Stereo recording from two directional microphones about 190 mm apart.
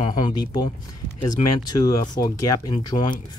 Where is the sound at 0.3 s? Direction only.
25° left (ahead or behind).